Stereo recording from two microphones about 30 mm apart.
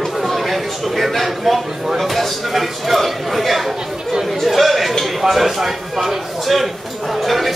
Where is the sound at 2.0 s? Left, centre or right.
Centre.